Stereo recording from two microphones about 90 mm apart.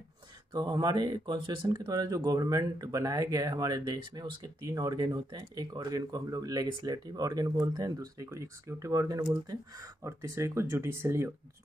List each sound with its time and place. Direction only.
0.5 s speech: 45° right (ahead or behind)
10.0 s speech: 30° right (ahead or behind)